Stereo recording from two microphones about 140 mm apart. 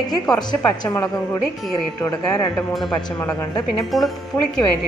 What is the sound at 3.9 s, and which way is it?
Speech, centre (ahead or behind).